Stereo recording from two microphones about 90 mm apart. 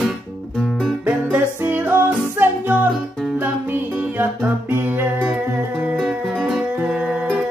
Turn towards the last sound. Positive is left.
turn(degrees=-10)  # may be behind; listen again after turning